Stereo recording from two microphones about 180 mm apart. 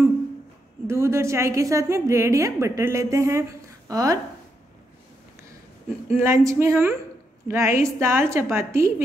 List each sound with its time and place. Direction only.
0.8 s a woman's voice: 15° right (ahead or behind)
6.0 s a woman's voice: 15° right (ahead or behind)